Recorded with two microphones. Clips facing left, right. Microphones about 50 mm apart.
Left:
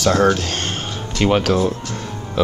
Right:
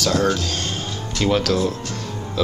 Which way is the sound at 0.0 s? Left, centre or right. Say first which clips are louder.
Left 4 dB; left.